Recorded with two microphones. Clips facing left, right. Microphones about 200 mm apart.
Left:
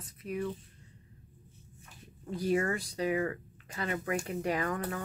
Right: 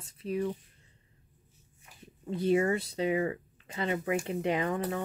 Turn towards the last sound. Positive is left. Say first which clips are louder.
# right 3 dB
turn(degrees=-25)  # may be behind; listen again after turning